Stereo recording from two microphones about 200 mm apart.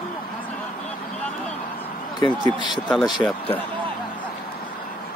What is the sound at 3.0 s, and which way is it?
Speech, 25° left (ahead or behind).